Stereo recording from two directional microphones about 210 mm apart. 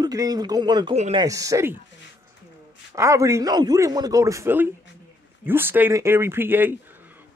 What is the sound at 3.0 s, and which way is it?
Speech, 15° right (ahead or behind).